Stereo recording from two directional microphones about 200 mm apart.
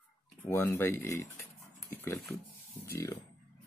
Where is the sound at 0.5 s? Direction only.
15° left (ahead or behind).